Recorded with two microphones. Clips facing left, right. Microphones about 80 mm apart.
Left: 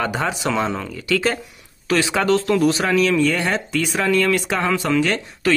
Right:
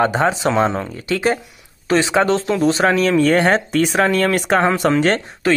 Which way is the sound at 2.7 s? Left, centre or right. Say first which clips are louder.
Right 3 dB; right.